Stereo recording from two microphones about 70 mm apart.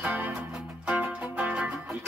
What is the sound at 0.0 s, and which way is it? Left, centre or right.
Music, centre.